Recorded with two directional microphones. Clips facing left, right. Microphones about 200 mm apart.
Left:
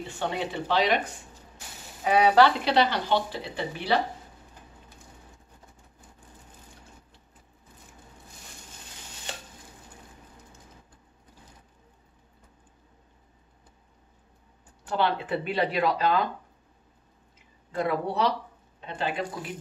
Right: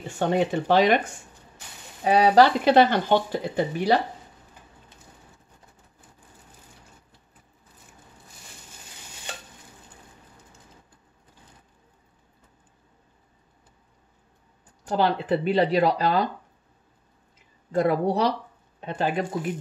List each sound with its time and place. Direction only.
0.0 s speech: 45° right (ahead or behind)
2.0 s speech: 35° right (ahead or behind)
14.9 s speech: 40° right (ahead or behind)
17.6 s speech: 40° right (ahead or behind)